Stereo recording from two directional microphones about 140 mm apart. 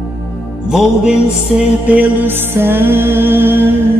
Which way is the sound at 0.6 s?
5° right (ahead or behind).